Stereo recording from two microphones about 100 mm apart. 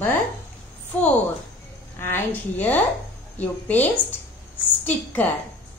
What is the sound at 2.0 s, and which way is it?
A woman's voice, 20° left (ahead or behind).